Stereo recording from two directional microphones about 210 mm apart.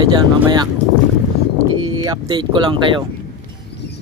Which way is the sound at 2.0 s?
20° right (ahead or behind).